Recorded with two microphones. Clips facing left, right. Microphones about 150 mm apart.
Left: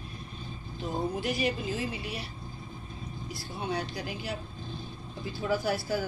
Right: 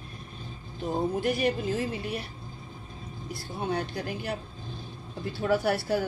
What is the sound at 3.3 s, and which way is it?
Speech, 50° right (ahead or behind).